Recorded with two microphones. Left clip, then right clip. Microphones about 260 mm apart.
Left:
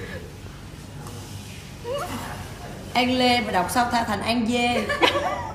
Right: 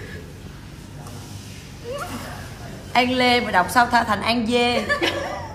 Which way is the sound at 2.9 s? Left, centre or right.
Centre.